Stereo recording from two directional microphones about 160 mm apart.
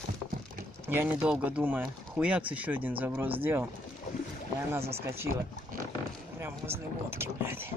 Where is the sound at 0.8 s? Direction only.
10° right (ahead or behind).